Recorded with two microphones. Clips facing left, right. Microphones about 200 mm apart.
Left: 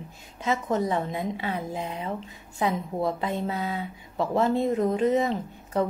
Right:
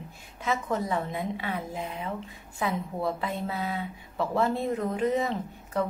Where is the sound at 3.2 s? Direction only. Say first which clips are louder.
Left 3 dB; 30° left (ahead or behind).